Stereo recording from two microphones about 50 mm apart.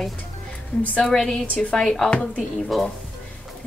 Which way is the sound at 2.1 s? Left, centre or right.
Left.